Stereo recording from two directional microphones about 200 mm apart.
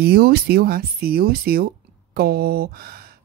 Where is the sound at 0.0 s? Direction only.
50° right (ahead or behind).